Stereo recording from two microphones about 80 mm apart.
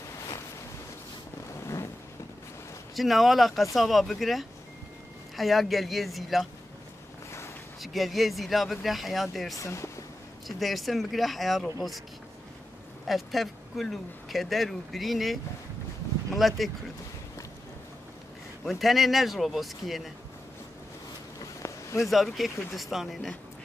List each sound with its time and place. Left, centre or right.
3.0 s speech: centre
7.8 s speech: centre
9.6 s speech: left
10.4 s speech: centre
13.0 s speech: centre
18.6 s speech: centre
21.6 s a sound: left
22.0 s speech: centre